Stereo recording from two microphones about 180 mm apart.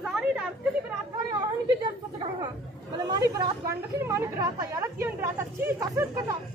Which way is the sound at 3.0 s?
20° right (ahead or behind).